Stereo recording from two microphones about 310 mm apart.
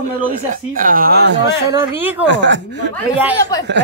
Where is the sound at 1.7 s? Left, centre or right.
Centre.